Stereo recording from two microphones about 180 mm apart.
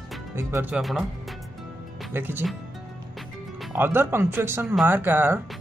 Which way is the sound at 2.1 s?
10° right (ahead or behind).